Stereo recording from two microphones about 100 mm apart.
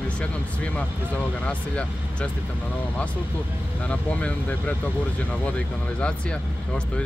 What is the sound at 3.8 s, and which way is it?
Speech, 15° left (ahead or behind).